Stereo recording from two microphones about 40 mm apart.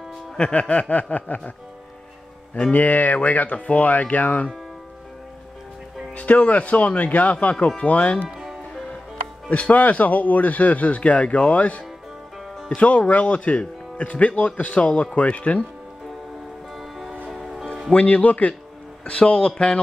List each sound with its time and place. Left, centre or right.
0.4 s speech: left
2.7 s speech: left
6.1 s speech: left
8.3 s music: centre
9.5 s speech: left
17.3 s music: centre
17.9 s speech: left
19.0 s speech: left